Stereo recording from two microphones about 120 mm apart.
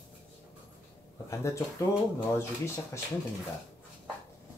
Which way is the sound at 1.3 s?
25° left (ahead or behind).